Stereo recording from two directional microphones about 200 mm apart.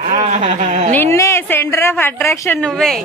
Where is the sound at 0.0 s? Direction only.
35° right (ahead or behind).